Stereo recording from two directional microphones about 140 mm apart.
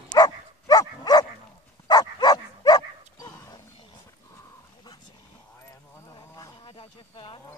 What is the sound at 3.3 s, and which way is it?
Wild animals, 20° left (ahead or behind).